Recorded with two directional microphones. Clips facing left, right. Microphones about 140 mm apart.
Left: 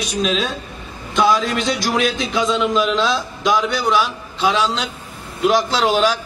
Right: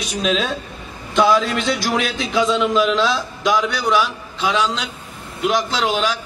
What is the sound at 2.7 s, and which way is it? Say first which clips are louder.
A man's voice: right 1 dB; 25° left (ahead or behind).